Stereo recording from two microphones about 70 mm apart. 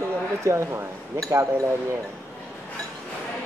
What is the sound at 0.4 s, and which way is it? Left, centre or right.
Speech, right.